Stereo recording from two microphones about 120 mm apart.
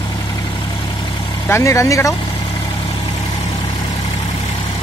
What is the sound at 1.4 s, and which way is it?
Speech, 25° left (ahead or behind).